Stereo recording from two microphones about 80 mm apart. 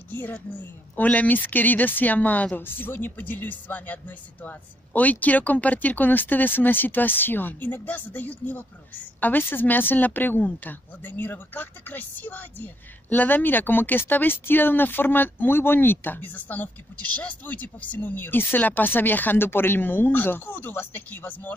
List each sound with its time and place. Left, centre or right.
0.1 s a woman's voice: left